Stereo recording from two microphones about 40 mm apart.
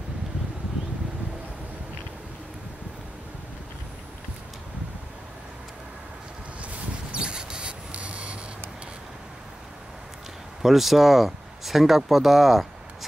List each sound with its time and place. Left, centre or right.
6.6 s a sound: right
7.9 s rub: right
10.6 s speech: centre